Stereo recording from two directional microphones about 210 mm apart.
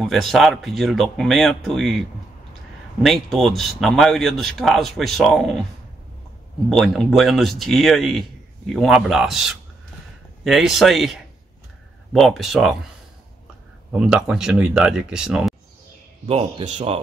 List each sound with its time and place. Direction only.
0.0 s a man's voice: centre (ahead or behind)
6.7 s a man's voice: centre (ahead or behind)
13.9 s a man's voice: 5° right (ahead or behind)
16.3 s speech: 25° right (ahead or behind)